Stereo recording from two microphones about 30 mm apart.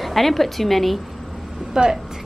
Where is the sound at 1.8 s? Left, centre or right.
Right.